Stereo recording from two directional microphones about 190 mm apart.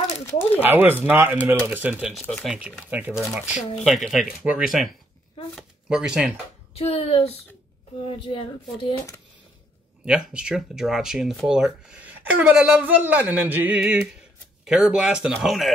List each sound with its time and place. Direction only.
0.6 s speech: 10° right (ahead or behind)
6.7 s speech: 30° left (ahead or behind)
8.9 s speech: 15° left (ahead or behind)
10.0 s speech: 5° right (ahead or behind)